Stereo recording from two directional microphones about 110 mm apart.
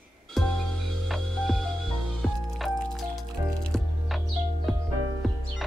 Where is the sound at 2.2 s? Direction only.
Centre (ahead or behind).